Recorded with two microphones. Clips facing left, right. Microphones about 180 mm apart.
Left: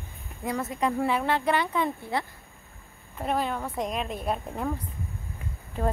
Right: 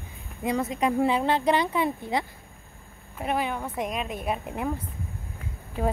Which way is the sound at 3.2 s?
Centre (ahead or behind).